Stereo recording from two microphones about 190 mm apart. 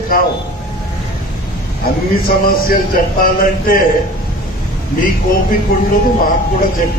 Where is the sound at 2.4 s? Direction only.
50° left (ahead or behind).